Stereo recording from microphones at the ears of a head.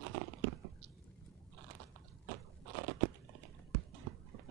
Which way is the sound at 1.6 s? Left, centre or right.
Right.